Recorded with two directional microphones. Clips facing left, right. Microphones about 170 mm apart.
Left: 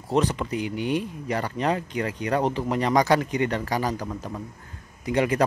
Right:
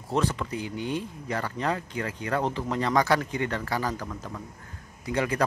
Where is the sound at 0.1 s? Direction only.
15° left (ahead or behind).